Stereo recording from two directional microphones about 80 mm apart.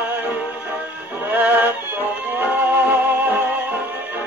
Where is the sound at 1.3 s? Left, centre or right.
Right.